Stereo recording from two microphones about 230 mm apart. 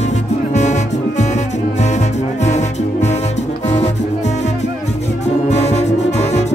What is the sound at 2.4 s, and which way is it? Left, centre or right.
Music, left.